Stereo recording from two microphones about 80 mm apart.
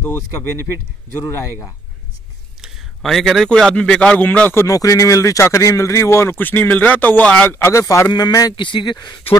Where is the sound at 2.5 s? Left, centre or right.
Centre.